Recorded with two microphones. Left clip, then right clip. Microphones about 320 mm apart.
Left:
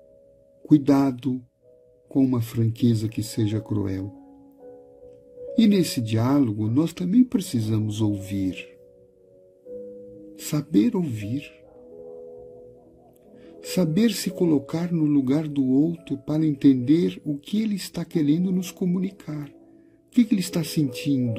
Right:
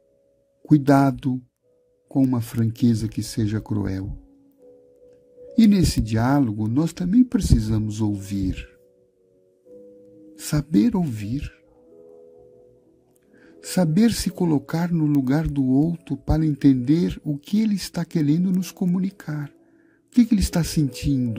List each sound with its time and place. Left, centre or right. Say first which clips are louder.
0.7 s speech: right 2 dB; right
5.6 s speech: right 2 dB; right
10.8 s speech: even; right
13.7 s speech: right 2 dB; right